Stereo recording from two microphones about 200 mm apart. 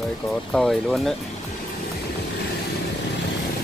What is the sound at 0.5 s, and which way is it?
Speech, centre (ahead or behind).